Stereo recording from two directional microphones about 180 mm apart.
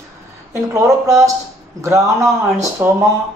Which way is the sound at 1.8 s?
15° right (ahead or behind).